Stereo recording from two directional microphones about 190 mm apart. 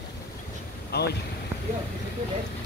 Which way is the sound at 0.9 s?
55° left (ahead or behind).